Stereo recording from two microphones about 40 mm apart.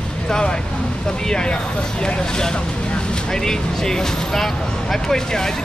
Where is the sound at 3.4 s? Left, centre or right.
Centre.